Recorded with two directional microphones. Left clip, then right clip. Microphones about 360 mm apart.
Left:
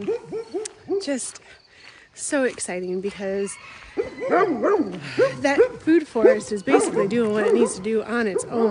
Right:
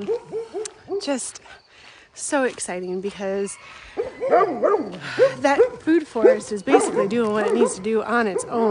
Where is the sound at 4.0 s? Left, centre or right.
Right.